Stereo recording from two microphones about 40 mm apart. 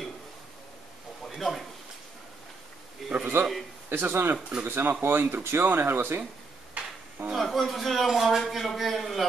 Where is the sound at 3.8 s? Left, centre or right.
Right.